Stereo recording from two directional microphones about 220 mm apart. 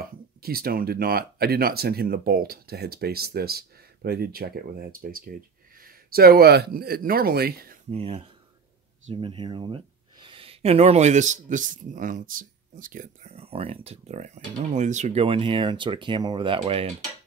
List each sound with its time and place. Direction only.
0.0 s speech: 45° right (ahead or behind)
7.9 s speech: 25° right (ahead or behind)